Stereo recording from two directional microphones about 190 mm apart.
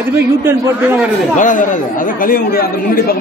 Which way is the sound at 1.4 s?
40° left (ahead or behind).